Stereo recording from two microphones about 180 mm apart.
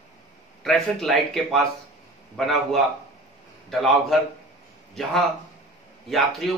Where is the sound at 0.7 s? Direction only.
Centre (ahead or behind).